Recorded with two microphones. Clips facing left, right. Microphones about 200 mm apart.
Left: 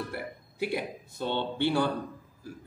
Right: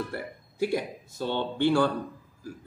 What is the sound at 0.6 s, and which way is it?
Speech, 45° right (ahead or behind).